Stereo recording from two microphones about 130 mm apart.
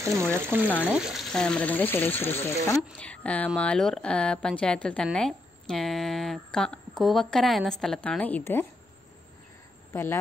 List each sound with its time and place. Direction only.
0.3 s speech: 15° right (ahead or behind)
1.3 s speech: 5° left (ahead or behind)
3.0 s a woman's voice: 10° left (ahead or behind)